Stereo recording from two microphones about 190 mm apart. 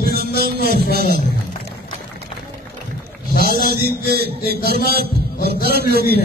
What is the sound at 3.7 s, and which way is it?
A man's voice, 55° right (ahead or behind).